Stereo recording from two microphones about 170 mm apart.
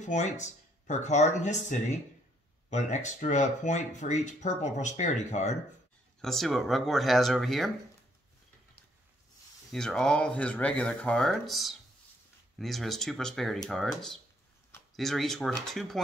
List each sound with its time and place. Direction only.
0.0 s speech: 45° left (ahead or behind)
6.2 s speech: centre (ahead or behind)
9.7 s speech: 5° left (ahead or behind)